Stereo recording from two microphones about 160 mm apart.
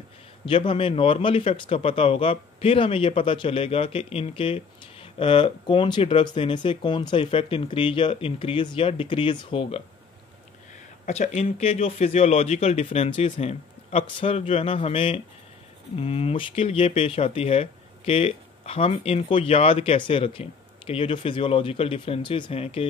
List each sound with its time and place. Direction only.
0.5 s speech: 35° left (ahead or behind)
11.1 s speech: 45° left (ahead or behind)